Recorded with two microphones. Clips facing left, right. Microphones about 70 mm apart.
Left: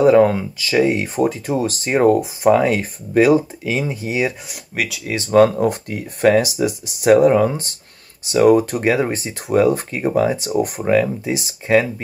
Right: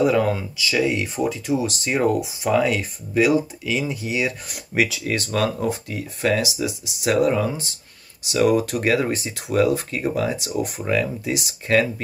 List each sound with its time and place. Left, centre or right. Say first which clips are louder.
0.0 s speech: left 7 dB; left
4.5 s speech: right 3 dB; centre
5.3 s speech: left 12 dB; left
7.1 s speech: left 7 dB; left
8.8 s speech: left 3 dB; left
11.6 s speech: left 4 dB; centre